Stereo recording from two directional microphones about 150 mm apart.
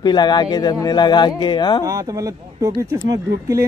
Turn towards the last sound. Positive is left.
turn(degrees=-20)  # may be behind; listen again after turning